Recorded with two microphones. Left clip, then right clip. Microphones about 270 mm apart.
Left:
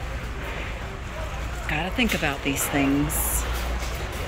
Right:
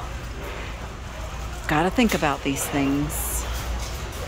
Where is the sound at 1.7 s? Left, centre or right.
Centre.